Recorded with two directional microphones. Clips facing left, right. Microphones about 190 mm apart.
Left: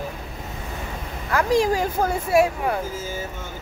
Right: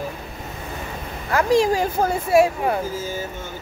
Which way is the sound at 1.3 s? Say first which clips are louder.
Right 2 dB; 25° right (ahead or behind).